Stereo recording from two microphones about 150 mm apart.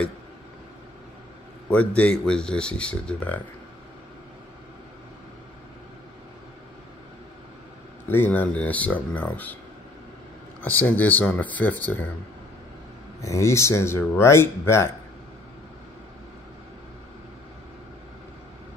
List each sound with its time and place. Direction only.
1.7 s speech: 10° left (ahead or behind)
8.1 s speech: 10° left (ahead or behind)
10.6 s speech: 10° left (ahead or behind)
13.2 s speech: 20° left (ahead or behind)